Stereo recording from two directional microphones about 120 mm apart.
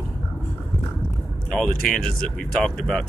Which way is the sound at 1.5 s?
5° left (ahead or behind).